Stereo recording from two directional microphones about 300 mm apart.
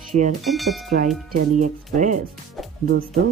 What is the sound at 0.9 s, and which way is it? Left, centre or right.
Speech, right.